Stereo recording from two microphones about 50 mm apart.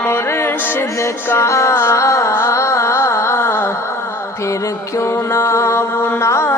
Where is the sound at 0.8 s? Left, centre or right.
Left.